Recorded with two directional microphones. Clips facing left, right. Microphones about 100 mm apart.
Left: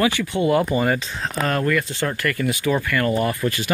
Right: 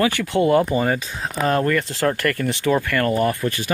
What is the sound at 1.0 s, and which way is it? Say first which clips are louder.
Speech: right 1 dB; 10° right (ahead or behind).